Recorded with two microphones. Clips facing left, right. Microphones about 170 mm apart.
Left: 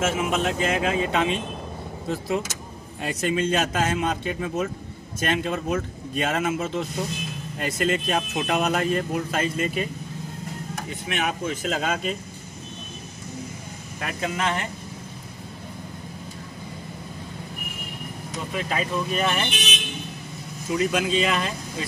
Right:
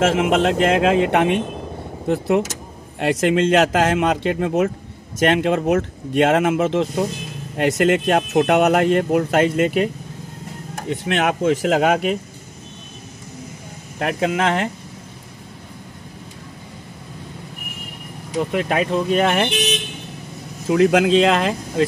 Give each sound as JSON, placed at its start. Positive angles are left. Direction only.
{"t": 0.0, "sound": "speech", "side_deg": -90}
{"t": 3.0, "sound": "speech", "side_deg": -75}
{"t": 10.9, "sound": "speech", "side_deg": -75}
{"t": 13.9, "sound": "speech", "side_deg": -65}
{"t": 18.5, "sound": "speech", "side_deg": -65}
{"t": 20.7, "sound": "speech", "side_deg": -80}